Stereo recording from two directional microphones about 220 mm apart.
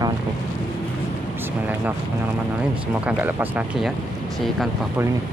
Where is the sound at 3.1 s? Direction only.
5° right (ahead or behind).